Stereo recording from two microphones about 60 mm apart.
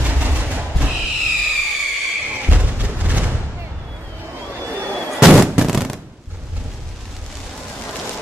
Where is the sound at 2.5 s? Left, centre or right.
Right.